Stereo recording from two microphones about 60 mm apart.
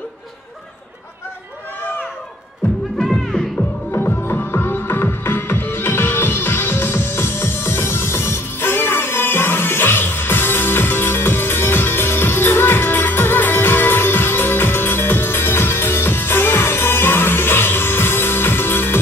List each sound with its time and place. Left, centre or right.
3.0 s music: centre
3.9 s music: left